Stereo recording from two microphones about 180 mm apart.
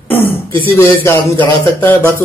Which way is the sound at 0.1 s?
10° left (ahead or behind).